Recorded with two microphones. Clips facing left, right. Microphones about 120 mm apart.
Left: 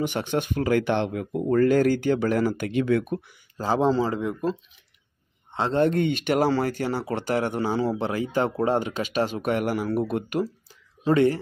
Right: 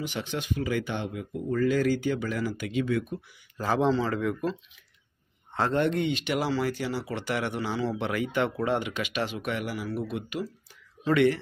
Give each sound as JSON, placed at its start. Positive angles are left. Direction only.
{"t": 0.0, "sound": "speech", "side_deg": 55}
{"t": 3.5, "sound": "a man's voice", "side_deg": 30}
{"t": 5.8, "sound": "speech", "side_deg": 45}
{"t": 11.1, "sound": "speech", "side_deg": 35}